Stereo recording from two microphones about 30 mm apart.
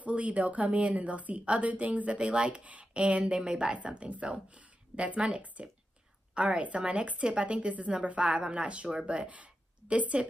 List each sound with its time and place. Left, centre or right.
0.0 s a woman's voice: right
1.7 s a woman's voice: right
2.1 s speech: right
2.6 s speech: right
2.9 s speech: right
3.4 s speech: right
3.7 s a woman's voice: right
6.4 s speech: right
6.9 s speech: right
9.3 s a sound: right